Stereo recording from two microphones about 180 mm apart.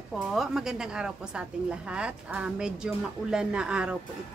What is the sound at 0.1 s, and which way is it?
A woman's voice, centre (ahead or behind).